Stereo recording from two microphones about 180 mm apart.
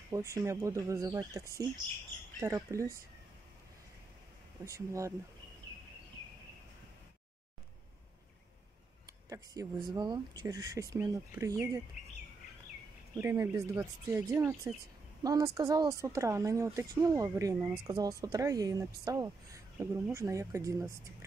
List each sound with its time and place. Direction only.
0.1 s speech: 15° right (ahead or behind)
4.6 s speech: 15° right (ahead or behind)
9.3 s speech: 20° right (ahead or behind)
13.2 s speech: 15° right (ahead or behind)